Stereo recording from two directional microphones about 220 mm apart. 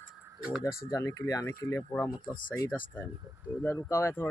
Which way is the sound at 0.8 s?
15° left (ahead or behind).